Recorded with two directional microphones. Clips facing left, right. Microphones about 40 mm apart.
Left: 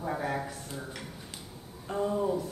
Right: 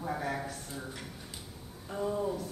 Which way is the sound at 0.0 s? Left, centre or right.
Centre.